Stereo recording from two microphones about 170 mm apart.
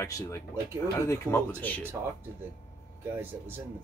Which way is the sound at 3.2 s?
10° right (ahead or behind).